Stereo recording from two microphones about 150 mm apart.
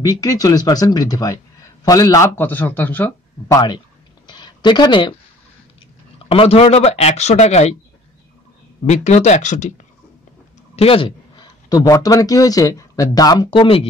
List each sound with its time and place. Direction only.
0.0 s speech: 25° left (ahead or behind)
3.4 s speech: 25° left (ahead or behind)
4.3 s a sound: 30° left (ahead or behind)
6.1 s speech: 40° left (ahead or behind)
8.8 s speech: 50° left (ahead or behind)
10.8 s speech: 35° left (ahead or behind)